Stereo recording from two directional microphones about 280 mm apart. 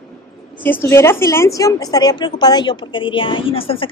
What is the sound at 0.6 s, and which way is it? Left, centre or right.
A woman's voice, centre.